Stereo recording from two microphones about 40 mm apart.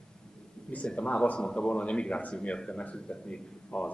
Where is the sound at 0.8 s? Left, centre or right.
Left.